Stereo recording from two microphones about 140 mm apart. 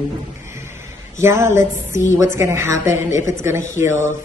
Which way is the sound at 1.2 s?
20° right (ahead or behind).